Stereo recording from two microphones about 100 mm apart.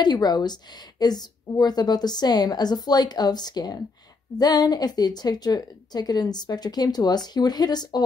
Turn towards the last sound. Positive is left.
turn(degrees=45)  # may be behind; listen again after turning